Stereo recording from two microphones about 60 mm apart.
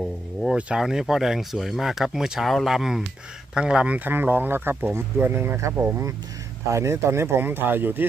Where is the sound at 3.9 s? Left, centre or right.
Right.